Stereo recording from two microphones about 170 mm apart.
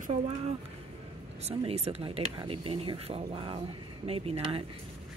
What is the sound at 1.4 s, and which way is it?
Speech, 35° right (ahead or behind).